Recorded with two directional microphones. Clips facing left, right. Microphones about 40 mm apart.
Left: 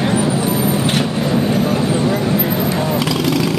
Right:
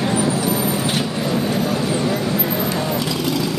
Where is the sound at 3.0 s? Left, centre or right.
Left.